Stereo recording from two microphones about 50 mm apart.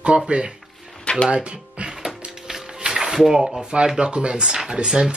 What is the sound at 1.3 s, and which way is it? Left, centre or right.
Speech, right.